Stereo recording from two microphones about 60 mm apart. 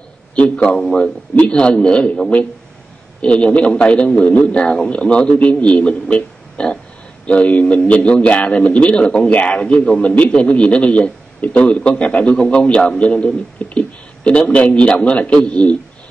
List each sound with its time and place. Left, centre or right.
0.6 s a man's voice: centre
3.2 s a man's voice: centre